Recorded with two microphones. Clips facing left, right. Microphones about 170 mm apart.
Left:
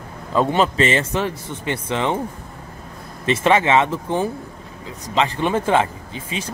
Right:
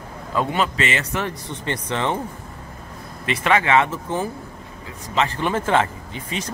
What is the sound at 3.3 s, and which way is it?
Speech, 25° left (ahead or behind).